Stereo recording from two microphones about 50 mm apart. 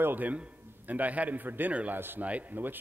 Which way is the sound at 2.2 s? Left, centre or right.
Right.